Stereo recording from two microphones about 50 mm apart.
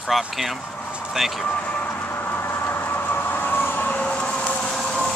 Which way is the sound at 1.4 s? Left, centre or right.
Left.